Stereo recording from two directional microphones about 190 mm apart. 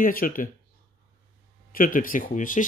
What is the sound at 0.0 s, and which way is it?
Speech, 50° left (ahead or behind).